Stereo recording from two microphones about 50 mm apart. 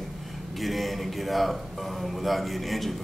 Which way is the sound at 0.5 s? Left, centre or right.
Centre.